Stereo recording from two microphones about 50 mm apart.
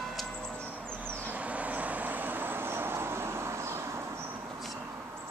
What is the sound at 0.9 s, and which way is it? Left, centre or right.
Vehicle, right.